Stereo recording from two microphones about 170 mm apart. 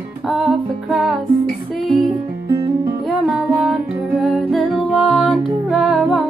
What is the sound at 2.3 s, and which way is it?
Music, 15° right (ahead or behind).